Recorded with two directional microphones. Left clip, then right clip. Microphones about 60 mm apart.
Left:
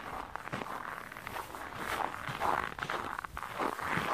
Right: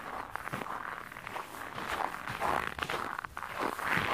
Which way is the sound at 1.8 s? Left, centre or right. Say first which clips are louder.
Right 1 dB; right.